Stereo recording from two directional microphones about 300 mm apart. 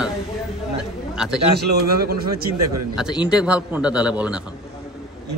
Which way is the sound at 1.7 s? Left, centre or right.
Right.